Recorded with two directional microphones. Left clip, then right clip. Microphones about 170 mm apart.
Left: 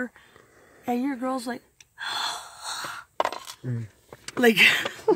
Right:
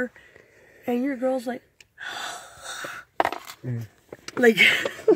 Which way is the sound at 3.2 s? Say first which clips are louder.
Right 3 dB; 20° right (ahead or behind).